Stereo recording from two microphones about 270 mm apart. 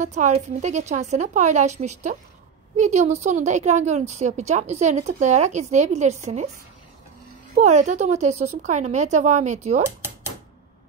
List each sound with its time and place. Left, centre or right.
0.0 s speech: right
7.5 s speech: right
9.8 s typewriter: centre